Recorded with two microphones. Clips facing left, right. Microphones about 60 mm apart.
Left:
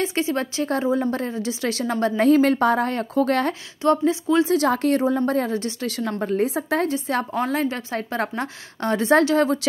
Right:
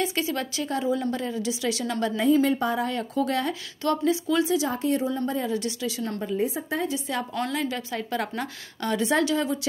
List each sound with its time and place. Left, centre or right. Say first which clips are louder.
0.0 s a woman's voice: left 4 dB; left
2.2 s speech: left 5 dB; left
3.8 s speech: left 5 dB; left
4.6 s a woman's voice: left 6 dB; left
5.5 s a woman's voice: left 2 dB; left
5.9 s speech: left 4 dB; left
6.4 s a woman's voice: left 5 dB; left
6.9 s speech: left 5 dB; left
7.3 s a woman's voice: left 5 dB; left